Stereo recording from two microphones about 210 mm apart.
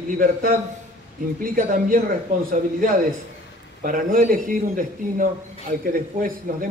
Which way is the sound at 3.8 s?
40° right (ahead or behind).